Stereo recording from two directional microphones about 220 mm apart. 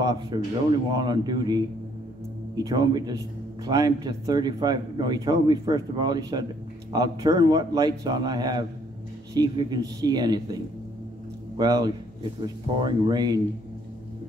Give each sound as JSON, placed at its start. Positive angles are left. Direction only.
{"t": 0.0, "sound": "a man's voice", "side_deg": -20}